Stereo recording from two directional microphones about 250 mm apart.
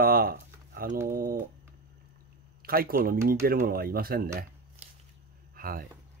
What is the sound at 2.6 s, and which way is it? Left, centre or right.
Speech, right.